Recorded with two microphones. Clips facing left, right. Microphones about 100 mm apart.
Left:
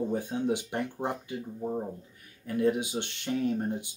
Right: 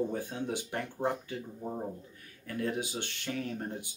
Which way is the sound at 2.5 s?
20° left (ahead or behind).